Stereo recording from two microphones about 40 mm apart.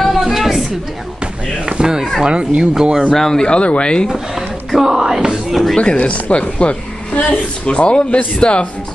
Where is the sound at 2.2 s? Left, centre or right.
Right.